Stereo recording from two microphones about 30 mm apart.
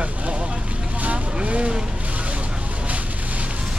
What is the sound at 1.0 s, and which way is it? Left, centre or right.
Vehicle, right.